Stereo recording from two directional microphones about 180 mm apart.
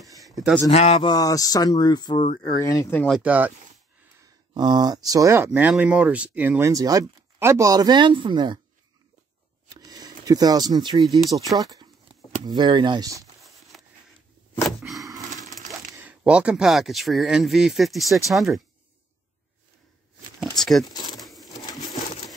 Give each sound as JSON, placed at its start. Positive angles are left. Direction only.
{"t": 0.2, "sound": "a sound", "side_deg": 0}
{"t": 0.7, "sound": "speech", "side_deg": 35}
{"t": 3.1, "sound": "speech", "side_deg": -5}
{"t": 4.2, "sound": "speech", "side_deg": -20}
{"t": 6.7, "sound": "speech", "side_deg": -20}
{"t": 9.7, "sound": "speech", "side_deg": -20}
{"t": 13.4, "sound": "a sound", "side_deg": 0}
{"t": 15.0, "sound": "a sound", "side_deg": -20}
{"t": 15.7, "sound": "speech", "side_deg": -10}
{"t": 20.3, "sound": "speech", "side_deg": 0}
{"t": 20.9, "sound": "a sound", "side_deg": 25}
{"t": 21.2, "sound": "crushing", "side_deg": 0}
{"t": 21.5, "sound": "bird", "side_deg": 20}